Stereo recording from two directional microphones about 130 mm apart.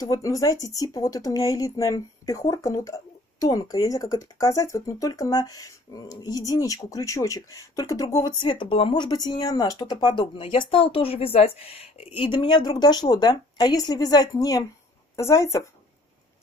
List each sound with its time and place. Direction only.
0.0 s speech: 25° left (ahead or behind)